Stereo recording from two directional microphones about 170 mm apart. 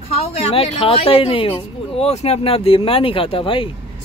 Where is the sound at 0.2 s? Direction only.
35° left (ahead or behind).